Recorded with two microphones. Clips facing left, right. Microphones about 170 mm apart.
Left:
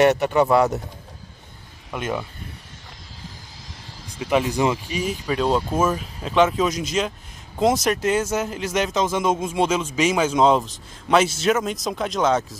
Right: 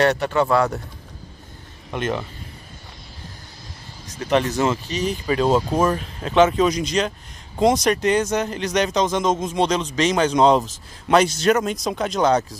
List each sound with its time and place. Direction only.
0.0 s speech: 20° left (ahead or behind)
1.9 s speech: 5° left (ahead or behind)
4.2 s speech: 5° left (ahead or behind)